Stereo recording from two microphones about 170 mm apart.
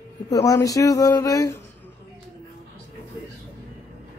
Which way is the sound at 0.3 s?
20° left (ahead or behind).